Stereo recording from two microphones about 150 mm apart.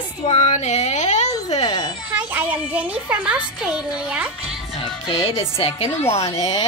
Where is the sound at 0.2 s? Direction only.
45° left (ahead or behind).